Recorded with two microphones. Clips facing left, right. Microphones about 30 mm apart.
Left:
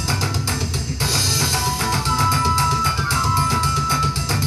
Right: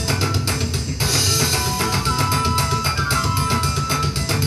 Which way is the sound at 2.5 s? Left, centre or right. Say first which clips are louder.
Left 2 dB; right.